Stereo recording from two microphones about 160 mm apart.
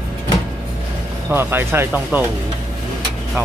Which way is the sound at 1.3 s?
15° right (ahead or behind).